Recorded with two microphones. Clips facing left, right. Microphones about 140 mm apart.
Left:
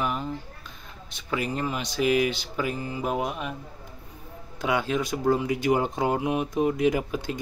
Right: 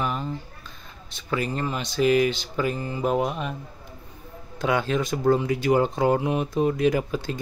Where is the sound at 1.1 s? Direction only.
10° left (ahead or behind).